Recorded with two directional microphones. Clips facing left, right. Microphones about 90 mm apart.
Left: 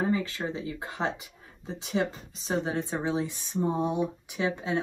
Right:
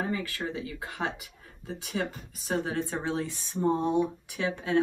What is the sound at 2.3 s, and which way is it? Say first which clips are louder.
Speech: even; 25° left (ahead or behind).